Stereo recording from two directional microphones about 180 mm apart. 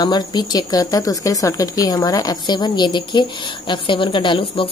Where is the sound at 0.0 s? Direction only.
25° left (ahead or behind).